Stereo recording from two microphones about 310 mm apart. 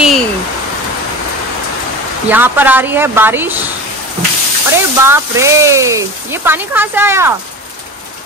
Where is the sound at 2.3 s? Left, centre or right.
Centre.